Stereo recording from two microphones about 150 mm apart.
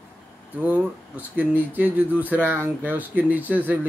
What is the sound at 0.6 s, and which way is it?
Speech, 10° right (ahead or behind).